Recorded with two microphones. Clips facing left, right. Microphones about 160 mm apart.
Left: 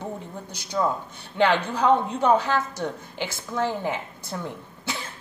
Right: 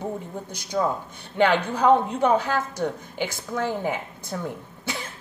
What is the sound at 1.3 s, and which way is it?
A woman's voice, 50° right (ahead or behind).